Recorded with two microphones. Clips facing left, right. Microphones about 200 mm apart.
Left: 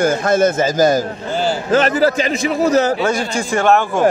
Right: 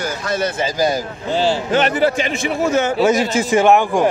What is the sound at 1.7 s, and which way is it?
A man's voice, 40° left (ahead or behind).